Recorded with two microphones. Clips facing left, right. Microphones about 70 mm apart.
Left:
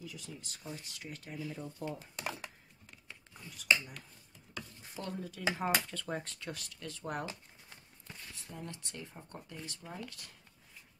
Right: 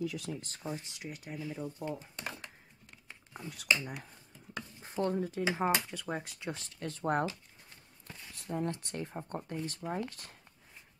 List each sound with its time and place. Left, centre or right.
0.0 s speech: right
0.3 s speech: right
0.7 s speech: right
3.3 s speech: right
4.6 s speech: right; by 6.5 s centre
6.5 s speech: right
8.4 s speech: right